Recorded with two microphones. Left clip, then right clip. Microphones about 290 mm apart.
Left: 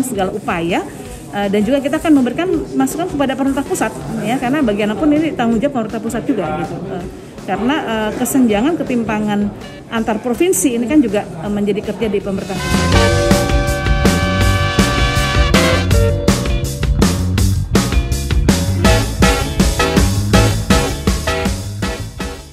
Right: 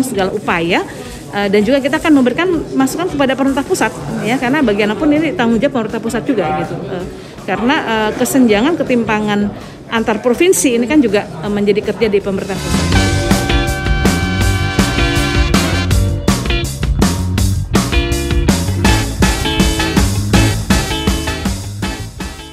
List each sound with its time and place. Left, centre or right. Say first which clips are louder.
0.1 s speech: right 3 dB; centre
7.4 s speech: right 3 dB; centre
11.6 s speech: right 5 dB; right
12.1 s music: right 4 dB; centre